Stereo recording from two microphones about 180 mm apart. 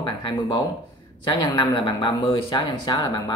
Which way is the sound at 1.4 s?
25° left (ahead or behind).